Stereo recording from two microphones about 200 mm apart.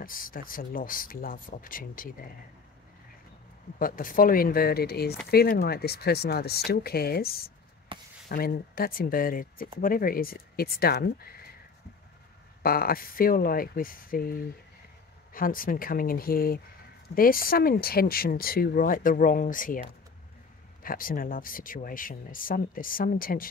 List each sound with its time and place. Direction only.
0.0 s speech: 45° left (ahead or behind)
3.8 s speech: 45° left (ahead or behind)
7.9 s speech: 25° right (ahead or behind)
8.3 s speech: 45° left (ahead or behind)
12.6 s speech: 45° left (ahead or behind)